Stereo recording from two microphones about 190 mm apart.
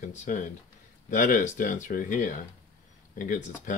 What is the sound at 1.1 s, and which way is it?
Speech, 45° left (ahead or behind).